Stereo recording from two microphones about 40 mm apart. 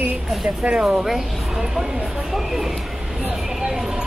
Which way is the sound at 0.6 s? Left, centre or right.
Right.